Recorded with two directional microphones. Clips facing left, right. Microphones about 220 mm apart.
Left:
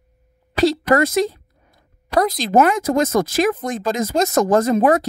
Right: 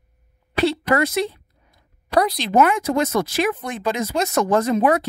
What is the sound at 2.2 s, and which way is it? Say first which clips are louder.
Speech: left 4 dB; 45° left (ahead or behind).